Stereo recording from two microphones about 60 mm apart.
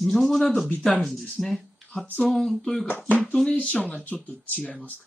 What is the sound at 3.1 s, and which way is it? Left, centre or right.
Speech, left.